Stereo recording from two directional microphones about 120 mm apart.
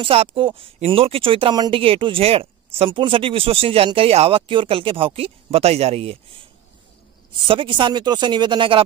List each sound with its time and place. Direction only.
0.0 s speech: 50° right (ahead or behind)
1.5 s speech: 35° right (ahead or behind)
1.8 s speech: 45° right (ahead or behind)
7.3 s speech: 45° right (ahead or behind)